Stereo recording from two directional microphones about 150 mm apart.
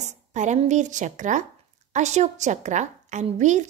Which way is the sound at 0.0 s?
50° right (ahead or behind).